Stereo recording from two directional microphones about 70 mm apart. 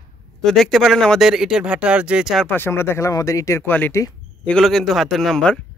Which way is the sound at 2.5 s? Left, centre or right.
Left.